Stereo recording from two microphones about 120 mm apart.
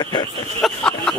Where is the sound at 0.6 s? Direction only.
5° left (ahead or behind).